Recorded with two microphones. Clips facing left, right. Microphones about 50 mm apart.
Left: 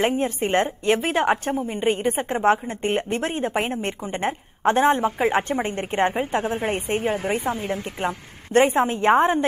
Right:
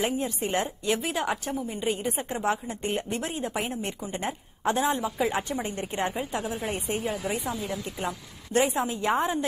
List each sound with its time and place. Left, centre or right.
0.0 s a woman's voice: left